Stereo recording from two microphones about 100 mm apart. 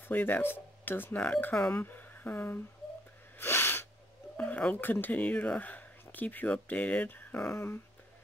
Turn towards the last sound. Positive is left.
turn(degrees=25)  # may be behind; listen again after turning